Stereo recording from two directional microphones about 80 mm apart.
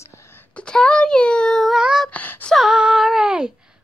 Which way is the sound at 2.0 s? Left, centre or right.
Left.